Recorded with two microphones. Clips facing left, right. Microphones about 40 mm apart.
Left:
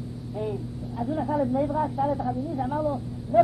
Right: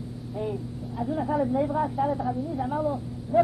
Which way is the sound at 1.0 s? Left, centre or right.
Centre.